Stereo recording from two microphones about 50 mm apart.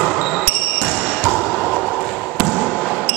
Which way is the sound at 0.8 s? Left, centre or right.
Centre.